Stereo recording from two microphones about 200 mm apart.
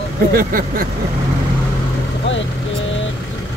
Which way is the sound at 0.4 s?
45° right (ahead or behind).